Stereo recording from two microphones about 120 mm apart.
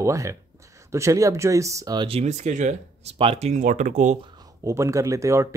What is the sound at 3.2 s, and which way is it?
Speech, 55° right (ahead or behind).